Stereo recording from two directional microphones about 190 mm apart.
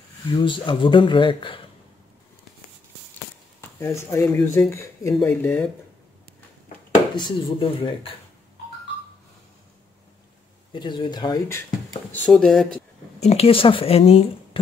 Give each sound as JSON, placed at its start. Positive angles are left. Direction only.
{"t": 0.3, "sound": "speech", "side_deg": 25}
{"t": 3.8, "sound": "speech", "side_deg": 15}
{"t": 7.2, "sound": "speech", "side_deg": 25}
{"t": 10.7, "sound": "speech", "side_deg": 25}
{"t": 12.3, "sound": "speech", "side_deg": 0}
{"t": 13.2, "sound": "a woman's voice", "side_deg": 30}